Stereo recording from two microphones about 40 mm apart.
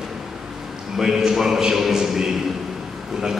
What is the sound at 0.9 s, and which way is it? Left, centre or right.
A man's voice, centre.